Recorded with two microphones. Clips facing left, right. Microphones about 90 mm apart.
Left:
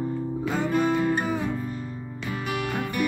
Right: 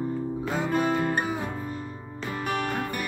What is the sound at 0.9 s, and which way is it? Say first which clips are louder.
Music: left 2 dB; 45° right (ahead or behind).